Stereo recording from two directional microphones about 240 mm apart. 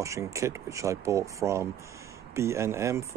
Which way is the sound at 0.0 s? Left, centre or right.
Centre.